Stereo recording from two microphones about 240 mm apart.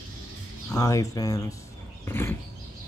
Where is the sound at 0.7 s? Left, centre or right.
Centre.